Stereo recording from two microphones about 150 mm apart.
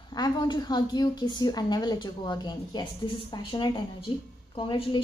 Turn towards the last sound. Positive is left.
turn(degrees=35)  # may be behind; listen again after turning